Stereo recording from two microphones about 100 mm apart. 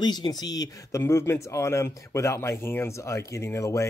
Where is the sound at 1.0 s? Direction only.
25° left (ahead or behind).